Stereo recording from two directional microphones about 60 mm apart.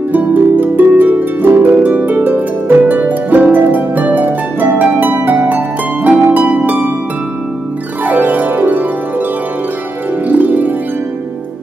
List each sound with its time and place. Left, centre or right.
0.1 s harp: right
6.0 s harp: right
8.0 s music: right
10.2 s harp: right